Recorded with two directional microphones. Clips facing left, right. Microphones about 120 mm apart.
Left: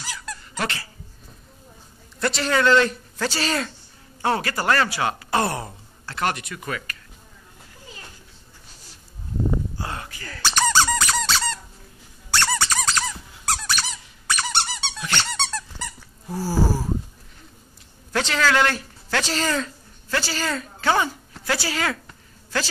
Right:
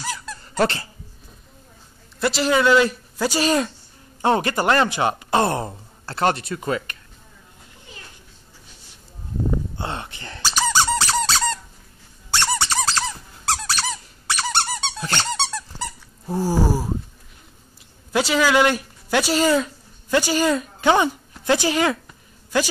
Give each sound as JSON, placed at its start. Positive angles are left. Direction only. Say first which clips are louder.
{"t": 0.0, "sound": "squeak", "louder": "right 4 dB", "side_deg": -35}
{"t": 2.1, "sound": "speech", "louder": "right 3 dB", "side_deg": -5}
{"t": 9.8, "sound": "speech", "louder": "right 3 dB", "side_deg": -25}
{"t": 10.5, "sound": "squeak", "louder": "even", "side_deg": -10}
{"t": 10.9, "sound": "squeak", "louder": "right 2 dB", "side_deg": -30}
{"t": 12.3, "sound": "squeak", "louder": "right 1 dB", "side_deg": -25}
{"t": 15.8, "sound": "dog", "louder": "right 4 dB", "side_deg": -25}
{"t": 18.1, "sound": "speech", "louder": "right 3 dB", "side_deg": -10}
{"t": 22.0, "sound": "a sound", "louder": "even", "side_deg": -15}